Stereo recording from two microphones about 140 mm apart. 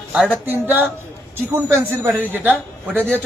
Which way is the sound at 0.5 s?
15° right (ahead or behind).